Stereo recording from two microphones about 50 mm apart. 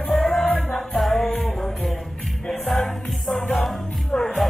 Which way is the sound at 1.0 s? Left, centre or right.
Centre.